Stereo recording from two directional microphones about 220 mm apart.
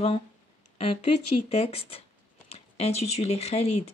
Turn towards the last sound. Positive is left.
turn(degrees=30)  # may be behind; listen again after turning